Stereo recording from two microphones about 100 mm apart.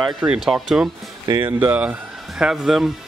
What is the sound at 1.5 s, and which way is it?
Speech, 20° right (ahead or behind).